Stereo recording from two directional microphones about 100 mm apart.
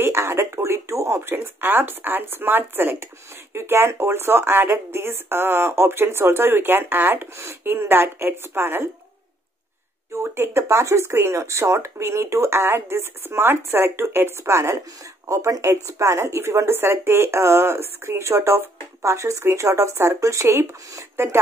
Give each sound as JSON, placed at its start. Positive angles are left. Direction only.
{"t": 0.0, "sound": "speech", "side_deg": -25}
{"t": 10.1, "sound": "speech", "side_deg": -25}